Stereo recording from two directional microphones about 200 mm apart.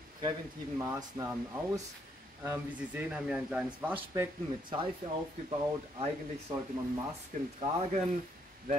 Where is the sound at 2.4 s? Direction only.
10° right (ahead or behind).